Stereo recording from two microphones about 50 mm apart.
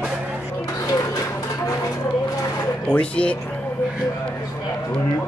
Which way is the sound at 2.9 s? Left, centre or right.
Left.